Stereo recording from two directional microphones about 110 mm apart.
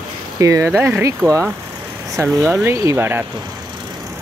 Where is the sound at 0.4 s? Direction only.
30° right (ahead or behind).